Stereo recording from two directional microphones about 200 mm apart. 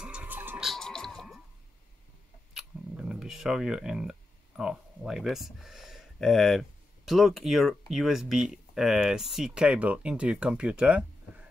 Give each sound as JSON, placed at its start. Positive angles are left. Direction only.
{"t": 0.0, "sound": "music", "side_deg": -5}
{"t": 2.5, "sound": "a sound", "side_deg": -5}
{"t": 7.1, "sound": "speech", "side_deg": 0}